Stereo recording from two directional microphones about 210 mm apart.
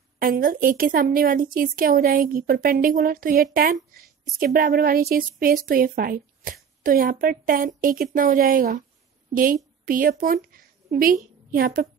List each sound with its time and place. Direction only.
0.2 s a woman's voice: 40° right (ahead or behind)